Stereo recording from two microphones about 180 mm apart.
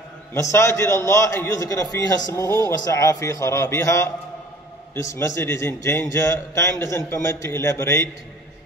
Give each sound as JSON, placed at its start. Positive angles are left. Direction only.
{"t": 0.3, "sound": "a man's voice", "side_deg": 15}